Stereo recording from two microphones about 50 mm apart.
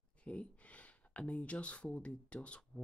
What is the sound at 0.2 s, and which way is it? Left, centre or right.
Speech, left.